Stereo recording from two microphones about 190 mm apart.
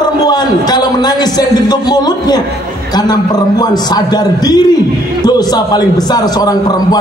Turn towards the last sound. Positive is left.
turn(degrees=20)  # may be behind; listen again after turning